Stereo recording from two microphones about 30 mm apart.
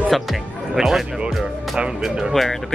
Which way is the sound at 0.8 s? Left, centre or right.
Right.